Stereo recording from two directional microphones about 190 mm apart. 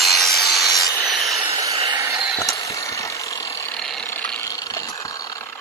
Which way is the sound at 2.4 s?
15° left (ahead or behind).